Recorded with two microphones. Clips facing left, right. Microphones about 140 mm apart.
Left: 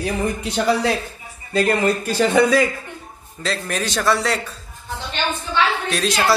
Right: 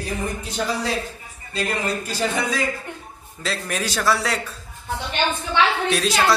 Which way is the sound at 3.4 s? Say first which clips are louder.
Left 2 dB; 5° right (ahead or behind).